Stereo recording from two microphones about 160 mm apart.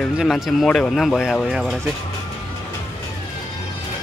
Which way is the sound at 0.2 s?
Centre (ahead or behind).